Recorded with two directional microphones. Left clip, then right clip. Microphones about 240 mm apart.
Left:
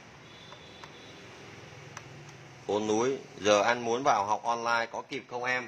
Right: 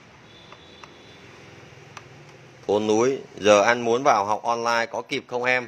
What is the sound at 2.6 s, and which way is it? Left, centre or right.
Speech, right.